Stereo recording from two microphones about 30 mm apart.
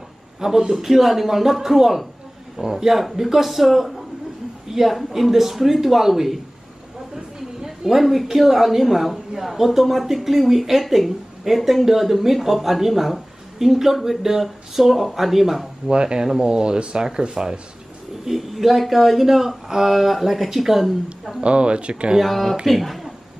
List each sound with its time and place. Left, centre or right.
0.4 s speech: centre
0.7 s speech: centre
2.6 s speech: right
2.9 s a woman's voice: centre
7.2 s a sound: centre
7.9 s speech: centre
13.7 s speech: centre
15.9 s speech: right
18.2 s a woman's voice: centre
21.4 s speech: right
22.2 s speech: centre